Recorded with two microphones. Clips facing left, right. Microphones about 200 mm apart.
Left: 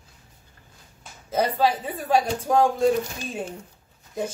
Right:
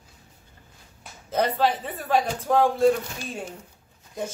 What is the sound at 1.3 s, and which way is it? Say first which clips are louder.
A man's voice: left 1 dB; 10° left (ahead or behind).